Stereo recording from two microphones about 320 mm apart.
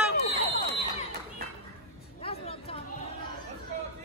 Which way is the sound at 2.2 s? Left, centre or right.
Centre.